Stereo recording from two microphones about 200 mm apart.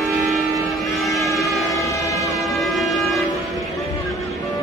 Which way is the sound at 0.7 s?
Centre (ahead or behind).